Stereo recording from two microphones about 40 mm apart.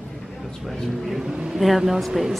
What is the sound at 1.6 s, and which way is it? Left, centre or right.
Speech, centre.